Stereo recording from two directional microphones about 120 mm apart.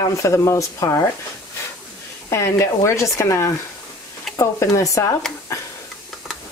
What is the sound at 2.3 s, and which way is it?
Speech, 25° left (ahead or behind).